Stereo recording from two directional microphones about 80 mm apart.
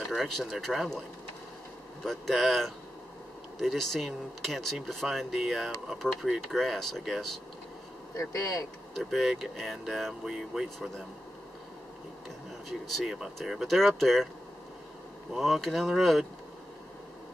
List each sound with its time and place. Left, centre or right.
0.0 s speech: centre
2.0 s speech: centre
8.2 s speech: left
8.9 s speech: centre
12.6 s speech: centre
15.3 s speech: centre